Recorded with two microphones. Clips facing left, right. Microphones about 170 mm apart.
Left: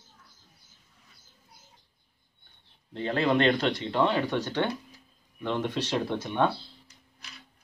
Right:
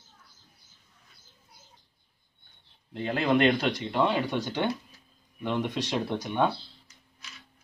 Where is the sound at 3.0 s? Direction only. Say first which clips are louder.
Even; 5° right (ahead or behind).